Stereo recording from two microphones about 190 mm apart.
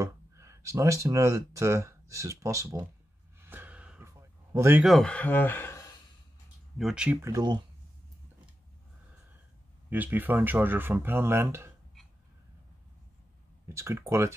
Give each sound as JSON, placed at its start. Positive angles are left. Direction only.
{"t": 0.0, "sound": "speech", "side_deg": -15}
{"t": 3.3, "sound": "gasp", "side_deg": -10}
{"t": 4.8, "sound": "speech", "side_deg": 5}
{"t": 6.8, "sound": "speech", "side_deg": -5}
{"t": 9.8, "sound": "speech", "side_deg": -10}
{"t": 13.7, "sound": "speech", "side_deg": -15}